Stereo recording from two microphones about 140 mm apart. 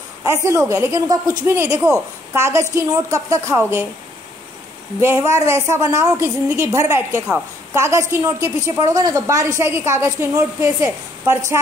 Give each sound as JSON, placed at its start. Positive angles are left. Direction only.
{"t": 0.2, "sound": "a woman's voice", "side_deg": -20}
{"t": 5.0, "sound": "a woman's voice", "side_deg": -20}